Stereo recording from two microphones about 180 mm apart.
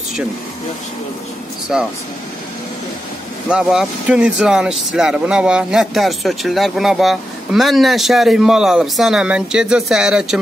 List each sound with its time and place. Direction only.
1.7 s speech: 5° right (ahead or behind)
3.4 s speech: 5° right (ahead or behind)